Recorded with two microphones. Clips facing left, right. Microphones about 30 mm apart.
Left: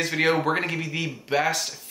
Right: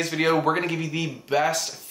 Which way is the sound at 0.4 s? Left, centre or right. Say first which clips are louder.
Right 1 dB; centre.